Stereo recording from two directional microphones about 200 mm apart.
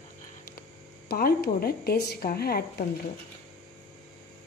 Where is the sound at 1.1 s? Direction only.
50° left (ahead or behind).